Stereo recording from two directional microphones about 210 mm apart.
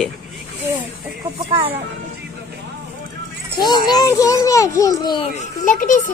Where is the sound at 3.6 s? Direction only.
20° left (ahead or behind).